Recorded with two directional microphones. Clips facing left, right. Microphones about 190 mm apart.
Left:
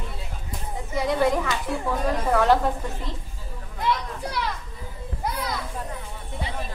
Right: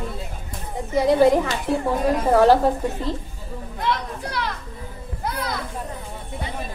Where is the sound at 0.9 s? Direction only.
30° right (ahead or behind).